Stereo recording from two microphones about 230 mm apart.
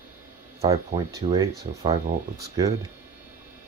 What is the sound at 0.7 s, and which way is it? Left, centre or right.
Speech, centre.